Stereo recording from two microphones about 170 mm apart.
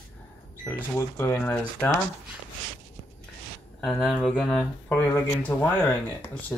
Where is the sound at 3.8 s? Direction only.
5° right (ahead or behind).